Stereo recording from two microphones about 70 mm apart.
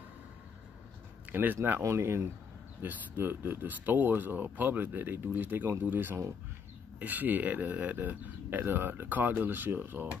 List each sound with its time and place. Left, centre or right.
1.3 s speech: right
1.8 s speech: right
2.8 s speech: right